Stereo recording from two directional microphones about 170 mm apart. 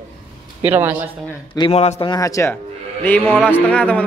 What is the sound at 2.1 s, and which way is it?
A man's voice, 20° left (ahead or behind).